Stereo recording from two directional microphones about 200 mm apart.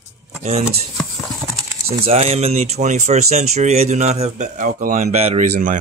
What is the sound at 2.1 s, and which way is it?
Speech, 30° right (ahead or behind).